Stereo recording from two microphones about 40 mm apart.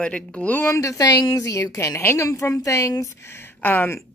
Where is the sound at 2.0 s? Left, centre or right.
Left.